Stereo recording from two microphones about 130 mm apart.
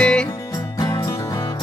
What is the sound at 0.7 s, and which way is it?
Music, 30° left (ahead or behind).